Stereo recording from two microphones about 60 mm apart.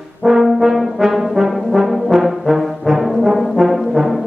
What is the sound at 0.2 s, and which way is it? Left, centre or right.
Brass instrument, centre.